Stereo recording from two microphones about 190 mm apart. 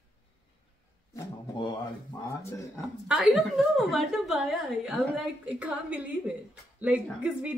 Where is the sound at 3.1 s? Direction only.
Centre (ahead or behind).